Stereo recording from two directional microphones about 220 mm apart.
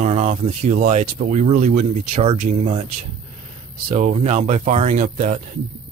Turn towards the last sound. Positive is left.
turn(degrees=-30)  # may be behind; listen again after turning